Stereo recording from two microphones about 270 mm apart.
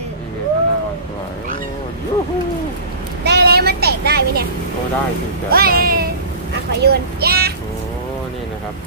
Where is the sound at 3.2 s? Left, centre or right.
Right.